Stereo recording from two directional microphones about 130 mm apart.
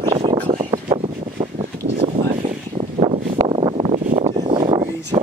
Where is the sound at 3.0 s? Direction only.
45° right (ahead or behind).